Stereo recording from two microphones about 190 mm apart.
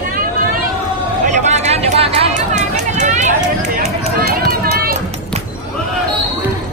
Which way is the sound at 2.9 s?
40° right (ahead or behind).